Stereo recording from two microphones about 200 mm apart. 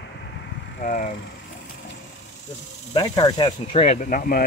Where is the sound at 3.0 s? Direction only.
20° left (ahead or behind); by 4.4 s 45° left (ahead or behind).